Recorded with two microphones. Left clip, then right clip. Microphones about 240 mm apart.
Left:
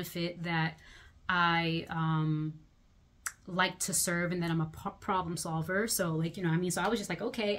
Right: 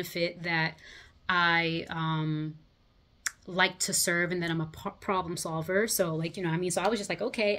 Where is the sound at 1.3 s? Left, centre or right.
Left.